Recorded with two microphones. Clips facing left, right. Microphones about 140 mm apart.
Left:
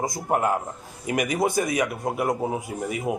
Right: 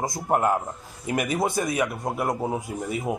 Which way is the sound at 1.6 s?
Centre (ahead or behind).